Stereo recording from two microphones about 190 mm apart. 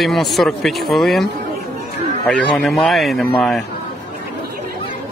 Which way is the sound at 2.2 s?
5° left (ahead or behind).